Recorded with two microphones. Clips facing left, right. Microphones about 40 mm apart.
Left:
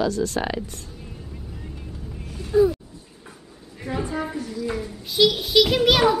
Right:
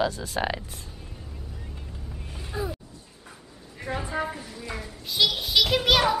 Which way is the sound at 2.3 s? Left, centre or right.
Centre.